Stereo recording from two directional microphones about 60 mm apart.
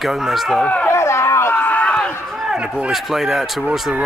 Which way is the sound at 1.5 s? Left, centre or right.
Left.